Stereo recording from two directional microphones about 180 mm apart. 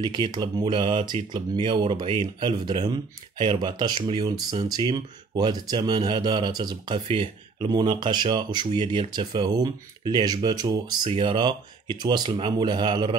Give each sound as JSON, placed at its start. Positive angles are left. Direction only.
{"t": 0.0, "sound": "speech", "side_deg": -25}